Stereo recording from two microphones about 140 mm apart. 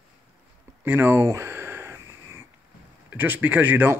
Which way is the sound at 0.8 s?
15° right (ahead or behind).